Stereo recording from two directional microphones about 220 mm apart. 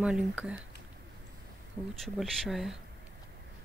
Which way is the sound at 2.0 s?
Centre (ahead or behind).